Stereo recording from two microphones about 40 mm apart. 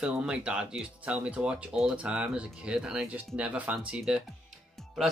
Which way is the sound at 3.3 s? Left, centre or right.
Right.